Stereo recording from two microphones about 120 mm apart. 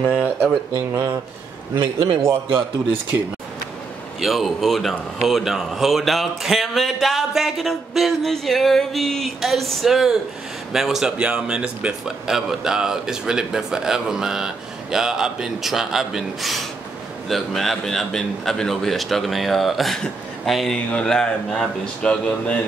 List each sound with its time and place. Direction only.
0.0 s speech: 10° right (ahead or behind)
4.2 s speech: centre (ahead or behind)